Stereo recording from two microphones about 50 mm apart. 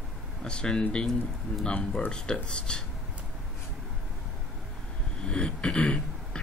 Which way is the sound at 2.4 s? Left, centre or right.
Centre.